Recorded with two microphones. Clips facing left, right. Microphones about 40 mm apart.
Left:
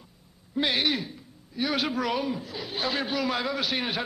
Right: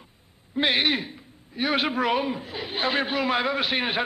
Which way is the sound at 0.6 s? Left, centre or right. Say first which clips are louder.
Right 3 dB; right.